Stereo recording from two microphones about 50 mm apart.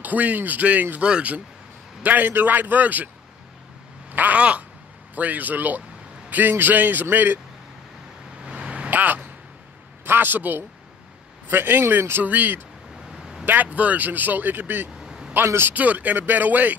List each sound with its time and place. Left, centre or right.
0.0 s speech: right
2.0 s speech: right
4.1 s a sound: right
5.1 s speech: right
8.5 s vehicle: centre
8.9 s a sound: right
10.0 s a man's voice: right
13.2 s vehicle: centre
13.5 s speech: right
15.0 s vehicle: centre
15.4 s speech: right
15.7 s speech: right